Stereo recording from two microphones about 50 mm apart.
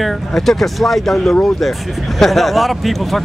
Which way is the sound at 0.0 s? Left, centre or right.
Centre.